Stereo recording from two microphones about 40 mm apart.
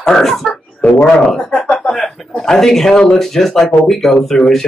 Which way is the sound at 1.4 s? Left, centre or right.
Centre.